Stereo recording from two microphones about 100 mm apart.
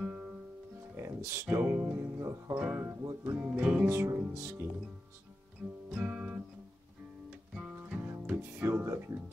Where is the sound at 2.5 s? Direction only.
15° right (ahead or behind).